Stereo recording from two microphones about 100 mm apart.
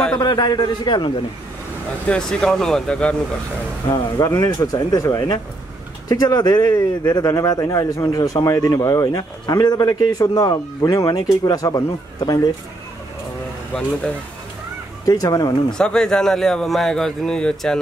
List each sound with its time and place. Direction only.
0.2 s a man's voice: 45° left (ahead or behind)
2.0 s speech: 10° left (ahead or behind)
3.9 s a man's voice: 35° left (ahead or behind)
15.0 s a man's voice: 35° left (ahead or behind)
15.8 s a man's voice: 5° left (ahead or behind)